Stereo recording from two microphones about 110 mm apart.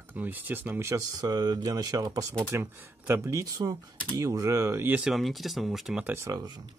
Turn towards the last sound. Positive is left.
turn(degrees=-40)  # may be behind; listen again after turning